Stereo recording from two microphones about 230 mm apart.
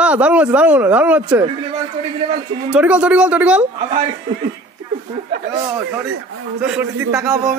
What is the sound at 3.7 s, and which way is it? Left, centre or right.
Speech, right.